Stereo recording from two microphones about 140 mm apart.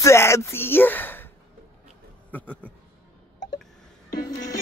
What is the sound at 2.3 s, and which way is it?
Speech, 10° left (ahead or behind).